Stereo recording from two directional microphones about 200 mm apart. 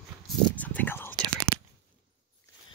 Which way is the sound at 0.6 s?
10° left (ahead or behind).